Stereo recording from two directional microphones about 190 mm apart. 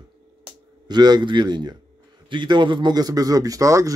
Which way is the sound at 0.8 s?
20° right (ahead or behind).